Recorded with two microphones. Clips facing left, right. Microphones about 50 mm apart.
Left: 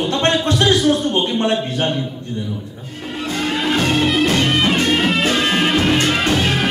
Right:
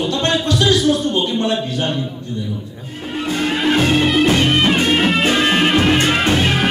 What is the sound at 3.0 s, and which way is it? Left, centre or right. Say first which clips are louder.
Music: right 2 dB; centre.